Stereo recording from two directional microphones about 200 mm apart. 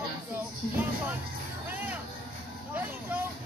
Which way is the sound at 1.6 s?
10° right (ahead or behind).